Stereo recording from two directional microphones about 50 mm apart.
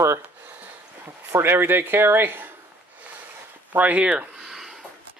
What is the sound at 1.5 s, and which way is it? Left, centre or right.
Speech, right.